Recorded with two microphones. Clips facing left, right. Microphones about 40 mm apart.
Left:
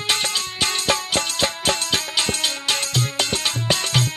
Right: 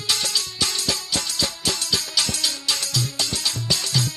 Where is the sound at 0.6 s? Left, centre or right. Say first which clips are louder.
Left 7 dB; left.